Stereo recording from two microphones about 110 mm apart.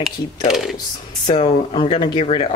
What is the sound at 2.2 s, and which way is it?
Speech, 65° left (ahead or behind).